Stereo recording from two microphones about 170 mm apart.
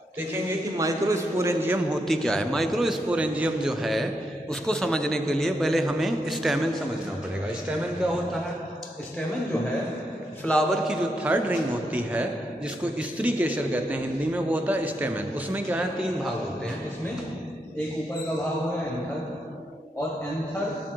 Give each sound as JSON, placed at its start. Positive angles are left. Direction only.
{"t": 0.7, "sound": "a man's voice", "side_deg": -20}
{"t": 2.0, "sound": "a man's voice", "side_deg": 5}
{"t": 10.5, "sound": "a man's voice", "side_deg": 5}
{"t": 10.9, "sound": "a man's voice", "side_deg": -10}